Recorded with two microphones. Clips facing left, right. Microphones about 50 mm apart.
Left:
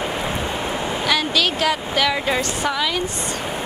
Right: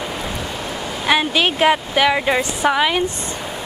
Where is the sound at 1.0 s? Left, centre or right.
Right.